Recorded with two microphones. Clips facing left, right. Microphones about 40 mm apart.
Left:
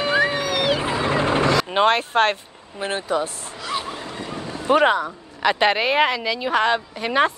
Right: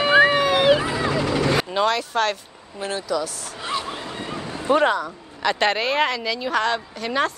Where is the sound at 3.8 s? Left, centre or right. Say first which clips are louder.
Even; right.